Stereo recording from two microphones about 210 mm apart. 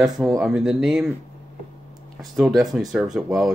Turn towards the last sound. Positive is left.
turn(degrees=0)  # may be behind; listen again after turning